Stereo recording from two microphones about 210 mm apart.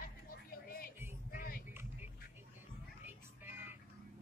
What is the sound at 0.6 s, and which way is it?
Music, 45° left (ahead or behind).